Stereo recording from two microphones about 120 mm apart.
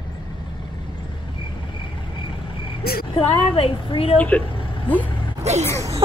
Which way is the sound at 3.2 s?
50° left (ahead or behind).